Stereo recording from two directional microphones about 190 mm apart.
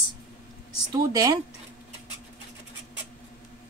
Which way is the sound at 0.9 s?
20° right (ahead or behind).